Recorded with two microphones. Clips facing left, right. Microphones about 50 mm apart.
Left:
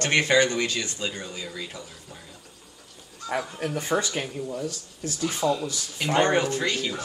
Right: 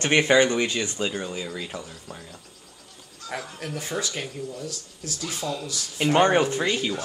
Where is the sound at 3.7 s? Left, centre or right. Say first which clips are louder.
Left 4 dB; centre.